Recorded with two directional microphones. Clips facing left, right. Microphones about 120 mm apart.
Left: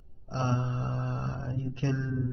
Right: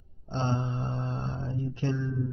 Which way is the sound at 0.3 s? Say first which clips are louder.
Right 1 dB; 25° right (ahead or behind).